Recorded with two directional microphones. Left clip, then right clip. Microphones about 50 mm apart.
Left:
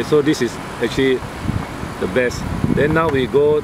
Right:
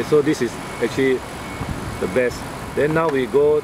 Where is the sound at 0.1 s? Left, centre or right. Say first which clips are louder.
Left 1 dB; left.